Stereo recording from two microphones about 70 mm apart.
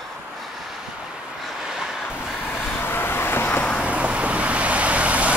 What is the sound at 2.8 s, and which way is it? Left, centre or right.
Vehicle, left.